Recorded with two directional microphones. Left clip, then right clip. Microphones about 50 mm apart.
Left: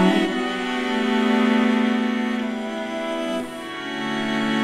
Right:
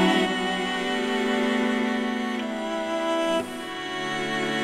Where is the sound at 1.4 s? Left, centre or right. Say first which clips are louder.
Left 4 dB; left.